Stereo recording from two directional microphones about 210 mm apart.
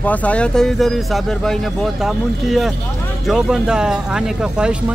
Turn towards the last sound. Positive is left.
turn(degrees=-5)  # may be behind; listen again after turning